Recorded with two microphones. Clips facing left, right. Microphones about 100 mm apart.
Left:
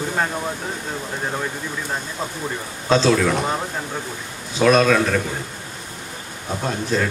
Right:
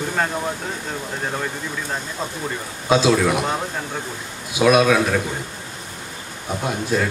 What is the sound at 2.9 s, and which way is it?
Speech, 10° right (ahead or behind).